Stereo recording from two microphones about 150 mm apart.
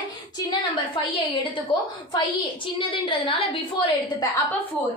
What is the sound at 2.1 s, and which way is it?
A woman's voice, 35° left (ahead or behind).